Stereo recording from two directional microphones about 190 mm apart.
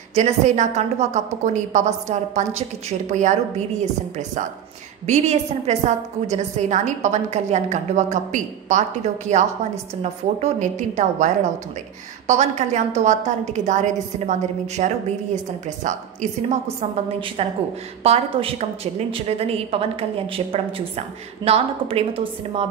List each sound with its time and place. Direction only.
0.1 s a woman's voice: 40° right (ahead or behind)
5.0 s a woman's voice: 35° right (ahead or behind)